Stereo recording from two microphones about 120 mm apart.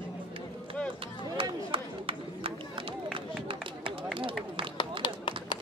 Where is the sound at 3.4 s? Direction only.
45° right (ahead or behind).